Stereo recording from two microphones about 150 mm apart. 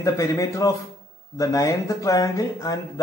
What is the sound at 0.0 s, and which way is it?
A man's voice, 20° left (ahead or behind).